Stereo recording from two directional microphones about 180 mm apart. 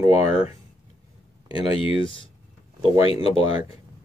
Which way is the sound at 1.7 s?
30° left (ahead or behind).